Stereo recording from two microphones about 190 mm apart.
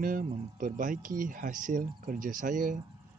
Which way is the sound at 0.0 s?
45° right (ahead or behind).